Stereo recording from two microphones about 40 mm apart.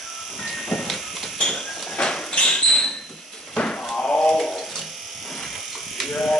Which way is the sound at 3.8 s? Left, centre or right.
Centre.